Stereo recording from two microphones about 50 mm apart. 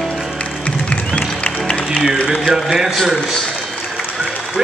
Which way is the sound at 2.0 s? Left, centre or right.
Centre.